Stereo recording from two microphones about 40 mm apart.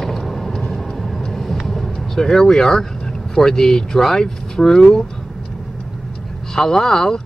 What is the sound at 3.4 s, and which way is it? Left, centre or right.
Speech, centre.